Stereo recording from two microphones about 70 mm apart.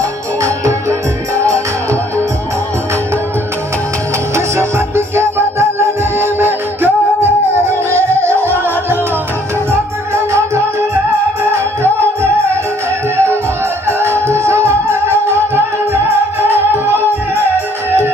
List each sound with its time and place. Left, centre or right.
0.4 s music: right
4.4 s music: right
11.8 s music: right